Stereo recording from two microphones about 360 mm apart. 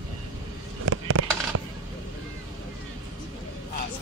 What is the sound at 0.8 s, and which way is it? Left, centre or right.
Fireworks, right.